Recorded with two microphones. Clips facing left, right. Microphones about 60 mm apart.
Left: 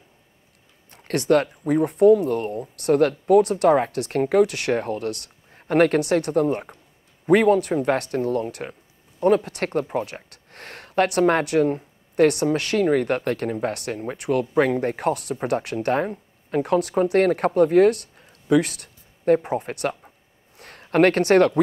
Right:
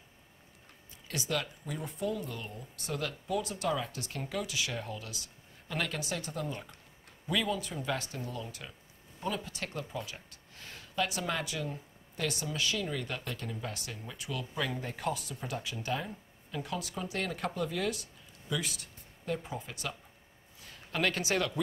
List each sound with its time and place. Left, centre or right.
0.8 s speech: left